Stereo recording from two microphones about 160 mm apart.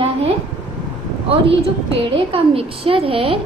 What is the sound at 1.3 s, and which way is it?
A woman's voice, 35° right (ahead or behind).